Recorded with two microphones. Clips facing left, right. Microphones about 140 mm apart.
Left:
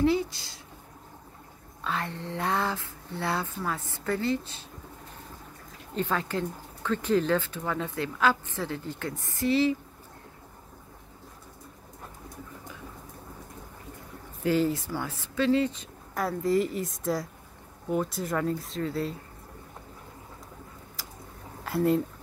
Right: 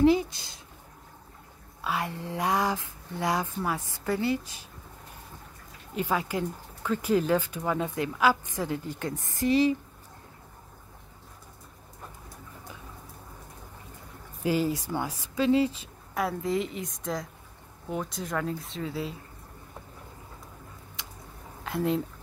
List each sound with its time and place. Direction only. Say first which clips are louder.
0.0 s speech: right 3 dB; 20° right (ahead or behind)
1.9 s speech: right 1 dB; 10° right (ahead or behind)
5.9 s speech: even; 10° right (ahead or behind)
14.4 s speech: left 1 dB; 15° right (ahead or behind)
21.6 s speech: left 3 dB; centre (ahead or behind)